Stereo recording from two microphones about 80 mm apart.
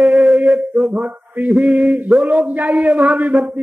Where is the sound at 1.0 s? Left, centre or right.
Right.